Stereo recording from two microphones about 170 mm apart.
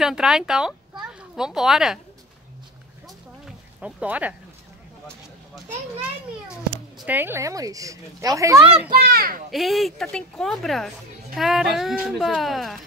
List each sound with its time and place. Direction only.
0.0 s speech: 5° right (ahead or behind)
3.4 s a sound: 5° right (ahead or behind)
6.5 s speech: 5° right (ahead or behind)
8.9 s a child's voice: 65° right (ahead or behind)
9.5 s speech: centre (ahead or behind)